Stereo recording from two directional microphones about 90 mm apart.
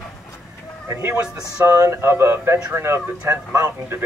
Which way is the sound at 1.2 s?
15° right (ahead or behind).